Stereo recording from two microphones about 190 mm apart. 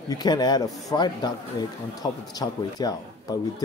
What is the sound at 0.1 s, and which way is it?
A man's voice, 20° left (ahead or behind).